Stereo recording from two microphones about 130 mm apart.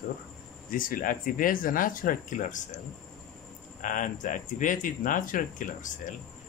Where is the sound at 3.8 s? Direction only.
75° left (ahead or behind).